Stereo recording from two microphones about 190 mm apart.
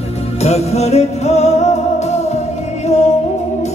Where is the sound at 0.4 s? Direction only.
35° left (ahead or behind).